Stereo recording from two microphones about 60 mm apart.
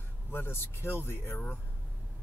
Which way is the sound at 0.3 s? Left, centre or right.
Left.